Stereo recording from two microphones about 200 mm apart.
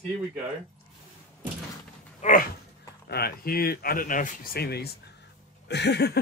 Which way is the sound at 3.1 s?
50° left (ahead or behind).